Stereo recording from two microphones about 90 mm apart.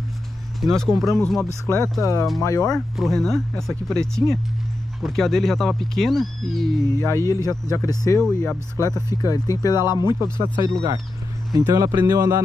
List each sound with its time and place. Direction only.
0.6 s speech: 5° left (ahead or behind)
1.7 s speech: 40° left (ahead or behind)
2.7 s speech: 5° left (ahead or behind)
7.0 s speech: 30° left (ahead or behind); by 10.1 s 50° left (ahead or behind)
10.3 s speech: 70° left (ahead or behind)
10.6 s speech: 45° right (ahead or behind)